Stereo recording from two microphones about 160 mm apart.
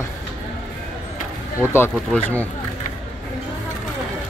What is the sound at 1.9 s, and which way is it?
Speech, 5° left (ahead or behind).